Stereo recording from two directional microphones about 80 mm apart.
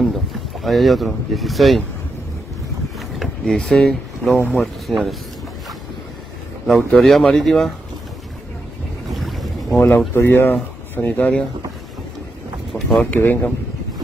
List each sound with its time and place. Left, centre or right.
0.7 s speech: centre
3.2 s speech: centre
6.9 s speech: centre
9.1 s boat: centre
9.8 s speech: left; by 11.4 s centre
12.7 s a sound: centre
13.0 s speech: left